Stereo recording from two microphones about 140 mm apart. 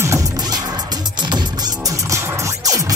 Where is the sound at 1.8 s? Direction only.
25° right (ahead or behind).